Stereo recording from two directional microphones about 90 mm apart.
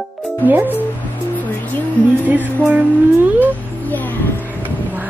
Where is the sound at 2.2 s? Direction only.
20° right (ahead or behind).